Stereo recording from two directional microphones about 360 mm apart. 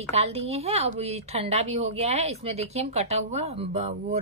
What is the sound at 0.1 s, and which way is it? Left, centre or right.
Speech, centre.